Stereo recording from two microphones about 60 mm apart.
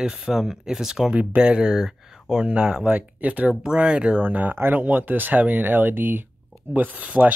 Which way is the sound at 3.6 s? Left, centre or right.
Centre.